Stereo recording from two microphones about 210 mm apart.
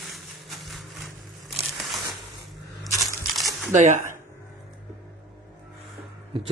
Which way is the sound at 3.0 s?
Centre (ahead or behind).